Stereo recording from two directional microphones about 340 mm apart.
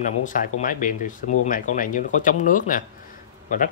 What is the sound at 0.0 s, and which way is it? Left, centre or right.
Speech, left.